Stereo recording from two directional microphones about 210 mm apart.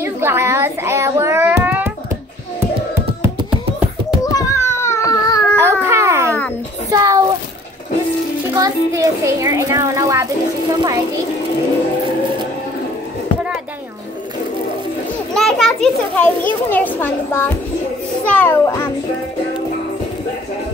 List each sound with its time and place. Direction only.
0.0 s child singing: 10° right (ahead or behind)
4.2 s a sound: 15° left (ahead or behind)
5.6 s baby cry: 10° right (ahead or behind)
6.9 s child singing: 15° right (ahead or behind)
8.5 s a child's voice: 15° right (ahead or behind)
15.3 s a child's voice: centre (ahead or behind)
18.3 s a sound: 10° left (ahead or behind)